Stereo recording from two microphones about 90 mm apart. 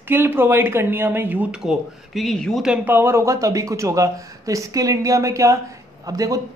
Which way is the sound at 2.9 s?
25° right (ahead or behind).